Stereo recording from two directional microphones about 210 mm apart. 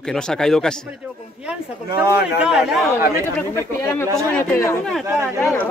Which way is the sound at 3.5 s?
10° left (ahead or behind).